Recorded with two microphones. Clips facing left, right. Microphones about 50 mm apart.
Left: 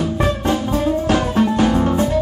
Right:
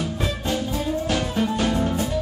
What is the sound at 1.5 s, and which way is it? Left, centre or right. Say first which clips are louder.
Music: left 7 dB; left.